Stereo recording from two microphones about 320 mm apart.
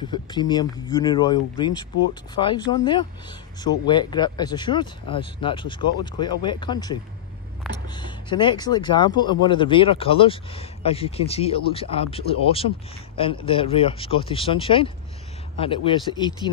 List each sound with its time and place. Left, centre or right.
0.1 s speech: centre